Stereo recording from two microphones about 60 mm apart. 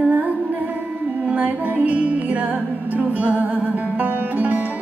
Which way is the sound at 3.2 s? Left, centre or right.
Right.